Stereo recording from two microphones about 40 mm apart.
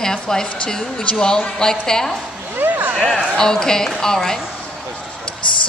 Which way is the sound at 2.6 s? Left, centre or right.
Right.